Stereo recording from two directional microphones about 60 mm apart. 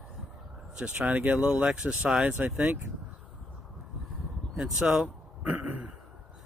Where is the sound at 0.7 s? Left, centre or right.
Centre.